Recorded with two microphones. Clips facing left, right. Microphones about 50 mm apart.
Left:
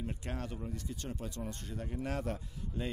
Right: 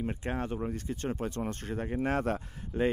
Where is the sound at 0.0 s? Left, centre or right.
Right.